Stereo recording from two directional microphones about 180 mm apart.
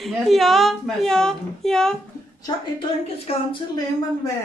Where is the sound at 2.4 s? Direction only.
30° left (ahead or behind).